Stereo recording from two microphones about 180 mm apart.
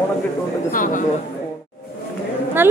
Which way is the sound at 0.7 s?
50° left (ahead or behind).